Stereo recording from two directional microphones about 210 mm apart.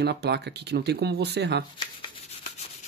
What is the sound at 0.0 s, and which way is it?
Speech, 50° right (ahead or behind).